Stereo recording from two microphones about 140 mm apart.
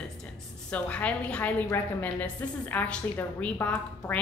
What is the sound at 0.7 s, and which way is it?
Speech, 10° left (ahead or behind).